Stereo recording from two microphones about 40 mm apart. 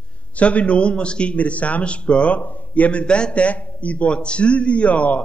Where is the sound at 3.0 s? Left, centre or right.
Left.